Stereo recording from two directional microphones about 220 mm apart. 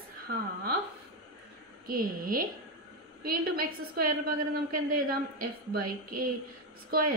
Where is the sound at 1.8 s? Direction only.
40° right (ahead or behind).